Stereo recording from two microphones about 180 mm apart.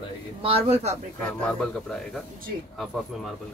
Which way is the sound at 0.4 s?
30° right (ahead or behind).